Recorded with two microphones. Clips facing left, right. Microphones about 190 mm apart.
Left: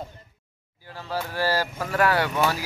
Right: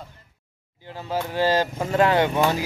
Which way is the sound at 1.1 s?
20° right (ahead or behind).